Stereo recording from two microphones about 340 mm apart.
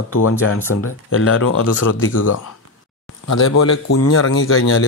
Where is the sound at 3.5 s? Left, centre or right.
Left.